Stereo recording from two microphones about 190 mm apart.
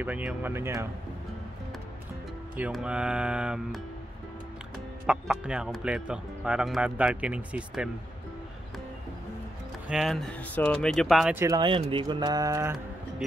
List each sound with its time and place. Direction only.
0.0 s speech: 5° right (ahead or behind)
2.5 s speech: 5° right (ahead or behind)
9.8 s speech: centre (ahead or behind)
11.4 s speech: 20° right (ahead or behind)